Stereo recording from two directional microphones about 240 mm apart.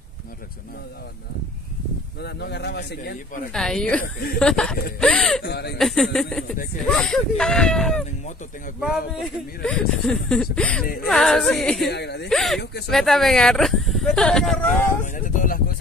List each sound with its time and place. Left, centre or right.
2.2 s speech: left
3.5 s speech: centre
4.0 s speech: left
4.4 s speech: centre
5.4 s speech: left
5.8 s speech: centre
11.9 s speech: left
12.3 s speech: centre
15.1 s speech: left